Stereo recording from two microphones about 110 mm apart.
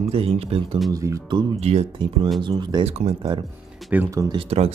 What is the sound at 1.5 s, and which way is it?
Speech, 70° right (ahead or behind).